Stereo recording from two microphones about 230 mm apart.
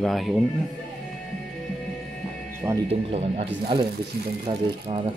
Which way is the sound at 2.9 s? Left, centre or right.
Right.